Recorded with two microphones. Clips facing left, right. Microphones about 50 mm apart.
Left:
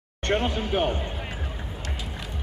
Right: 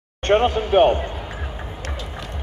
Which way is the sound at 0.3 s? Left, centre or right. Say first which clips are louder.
Right 8 dB; right.